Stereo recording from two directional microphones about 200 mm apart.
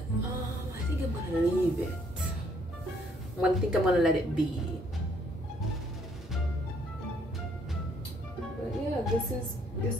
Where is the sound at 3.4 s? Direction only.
5° right (ahead or behind).